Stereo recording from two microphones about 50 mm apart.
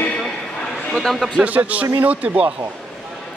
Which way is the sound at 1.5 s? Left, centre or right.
Right.